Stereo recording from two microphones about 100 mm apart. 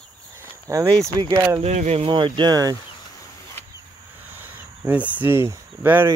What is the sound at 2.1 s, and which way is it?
Speech, 55° right (ahead or behind).